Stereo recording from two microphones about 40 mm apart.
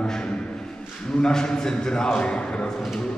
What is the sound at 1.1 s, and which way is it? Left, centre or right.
A man's voice, centre.